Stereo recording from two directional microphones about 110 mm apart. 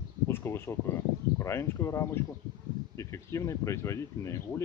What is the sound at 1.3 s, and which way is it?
Speech, 25° left (ahead or behind).